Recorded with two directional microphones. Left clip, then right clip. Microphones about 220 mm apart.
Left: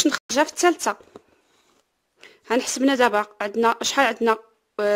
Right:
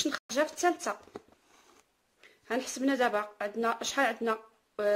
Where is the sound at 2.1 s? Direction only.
50° left (ahead or behind).